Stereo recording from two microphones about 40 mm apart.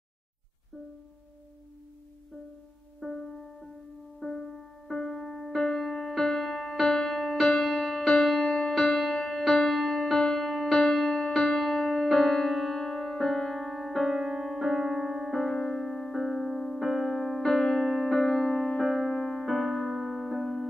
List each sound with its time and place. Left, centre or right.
3.0 s music: centre
4.2 s music: centre
9.8 s music: centre
15.5 s keyboard: centre
16.2 s piano: centre
17.8 s electric piano: centre
18.1 s keyboard: centre
19.1 s music: centre
19.4 s piano: centre